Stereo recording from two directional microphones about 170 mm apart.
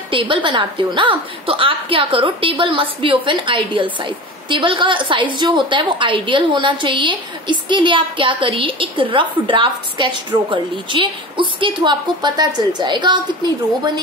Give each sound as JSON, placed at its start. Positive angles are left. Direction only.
{"t": 0.1, "sound": "a woman's voice", "side_deg": -30}